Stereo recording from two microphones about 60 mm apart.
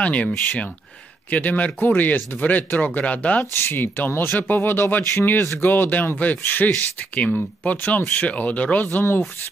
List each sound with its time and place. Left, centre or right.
0.0 s speech: left
1.3 s speech: left
3.5 s speech: left
7.2 s speech: left